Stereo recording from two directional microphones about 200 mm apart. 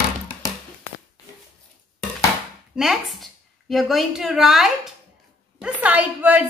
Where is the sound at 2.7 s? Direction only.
Centre (ahead or behind).